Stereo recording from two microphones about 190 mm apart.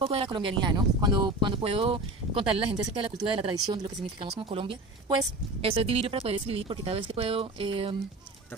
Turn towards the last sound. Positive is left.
turn(degrees=-30)  # may be behind; listen again after turning